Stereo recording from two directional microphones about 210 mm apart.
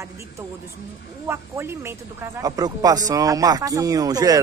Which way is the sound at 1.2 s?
10° right (ahead or behind).